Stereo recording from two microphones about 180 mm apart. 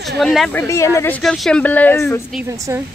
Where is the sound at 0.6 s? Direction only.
15° left (ahead or behind).